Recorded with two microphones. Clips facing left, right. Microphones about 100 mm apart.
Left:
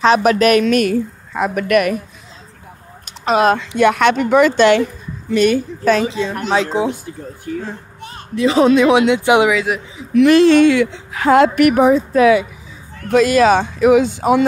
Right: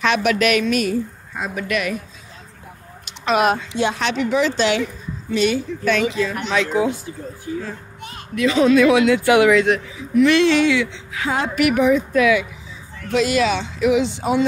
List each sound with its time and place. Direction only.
0.0 s a woman's voice: 35° left (ahead or behind); by 2.0 s 55° left (ahead or behind)
3.1 s speech: 35° left (ahead or behind)
3.5 s a woman's voice: 60° left (ahead or behind)
5.9 s speech: 30° left (ahead or behind)
8.0 s a sound: 35° left (ahead or behind)
8.7 s speech: 30° left (ahead or behind)
9.5 s a man's voice: 5° left (ahead or behind)
10.2 s a woman's voice: 45° left (ahead or behind)